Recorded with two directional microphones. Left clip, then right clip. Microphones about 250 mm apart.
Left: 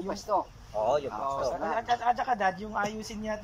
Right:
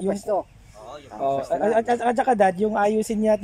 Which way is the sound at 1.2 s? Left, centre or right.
Right.